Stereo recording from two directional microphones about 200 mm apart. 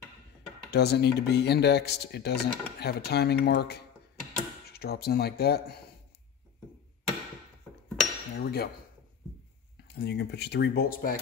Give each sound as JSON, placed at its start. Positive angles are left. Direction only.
{"t": 0.7, "sound": "speech", "side_deg": 55}
{"t": 8.0, "sound": "cutlery", "side_deg": 0}
{"t": 8.4, "sound": "speech", "side_deg": 50}
{"t": 9.8, "sound": "speech", "side_deg": 55}